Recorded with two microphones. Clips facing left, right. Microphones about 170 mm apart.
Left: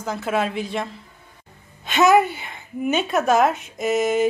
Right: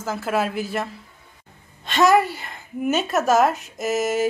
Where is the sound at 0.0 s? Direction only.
5° right (ahead or behind).